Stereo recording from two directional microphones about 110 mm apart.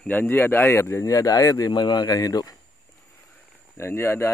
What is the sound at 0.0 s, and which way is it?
Speech, 15° left (ahead or behind).